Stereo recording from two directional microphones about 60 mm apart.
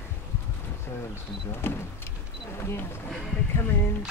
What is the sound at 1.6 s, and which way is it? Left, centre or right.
Speech, left.